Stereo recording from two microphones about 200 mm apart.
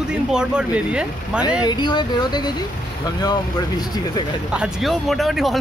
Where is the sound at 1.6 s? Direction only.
20° left (ahead or behind).